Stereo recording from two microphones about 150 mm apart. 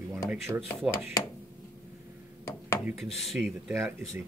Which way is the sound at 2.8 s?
5° right (ahead or behind).